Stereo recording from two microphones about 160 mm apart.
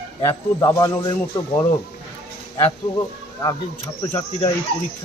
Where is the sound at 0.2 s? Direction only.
20° left (ahead or behind).